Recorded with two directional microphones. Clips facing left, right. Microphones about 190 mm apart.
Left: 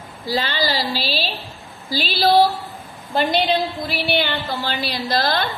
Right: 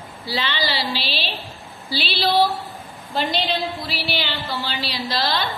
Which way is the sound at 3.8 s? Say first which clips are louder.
Left 5 dB; 50° left (ahead or behind).